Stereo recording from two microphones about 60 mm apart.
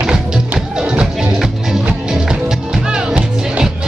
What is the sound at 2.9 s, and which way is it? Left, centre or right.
Music, centre.